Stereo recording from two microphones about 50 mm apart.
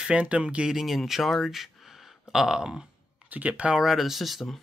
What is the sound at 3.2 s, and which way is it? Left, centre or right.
Speech, right.